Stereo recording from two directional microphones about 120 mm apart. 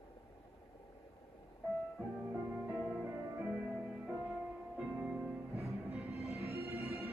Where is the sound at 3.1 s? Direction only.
15° right (ahead or behind).